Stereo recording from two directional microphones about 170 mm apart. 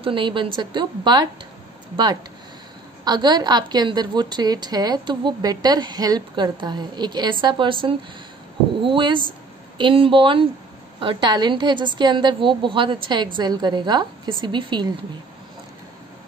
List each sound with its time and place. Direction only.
0.0 s a woman's voice: 30° right (ahead or behind)
3.1 s a woman's voice: 25° right (ahead or behind)